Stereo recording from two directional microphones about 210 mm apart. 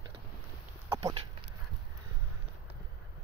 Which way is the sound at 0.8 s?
15° right (ahead or behind).